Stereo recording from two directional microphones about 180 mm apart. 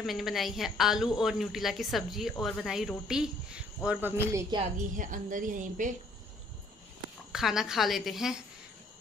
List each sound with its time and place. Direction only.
0.0 s speech: centre (ahead or behind); by 4.6 s 15° right (ahead or behind)
4.9 s a woman's voice: 45° right (ahead or behind)
7.3 s speech: centre (ahead or behind)